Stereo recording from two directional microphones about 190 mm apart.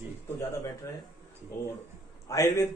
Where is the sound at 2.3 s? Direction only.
15° left (ahead or behind).